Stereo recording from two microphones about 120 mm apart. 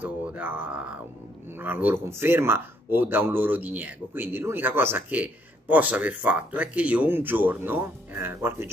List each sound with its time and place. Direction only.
0.0 s a man's voice: 15° right (ahead or behind)